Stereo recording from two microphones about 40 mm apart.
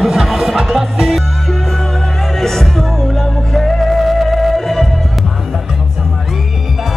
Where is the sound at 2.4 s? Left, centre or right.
Centre.